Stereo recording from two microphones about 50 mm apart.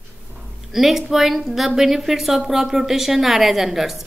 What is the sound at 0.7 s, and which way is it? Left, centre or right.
A woman's voice, centre.